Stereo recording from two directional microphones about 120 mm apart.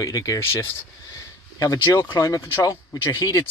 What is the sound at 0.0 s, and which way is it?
Speech, 30° left (ahead or behind).